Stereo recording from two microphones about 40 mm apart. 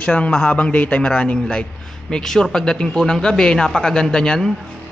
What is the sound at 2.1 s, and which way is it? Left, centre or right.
Speech, centre.